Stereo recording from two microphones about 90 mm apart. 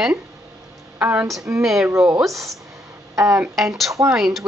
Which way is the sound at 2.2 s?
Centre (ahead or behind).